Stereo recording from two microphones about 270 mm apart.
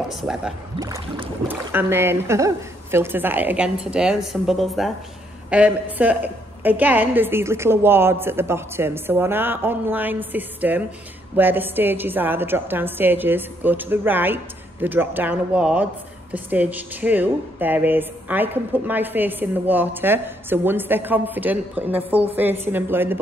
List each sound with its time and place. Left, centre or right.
0.1 s speech: centre
0.7 s a woman's voice: centre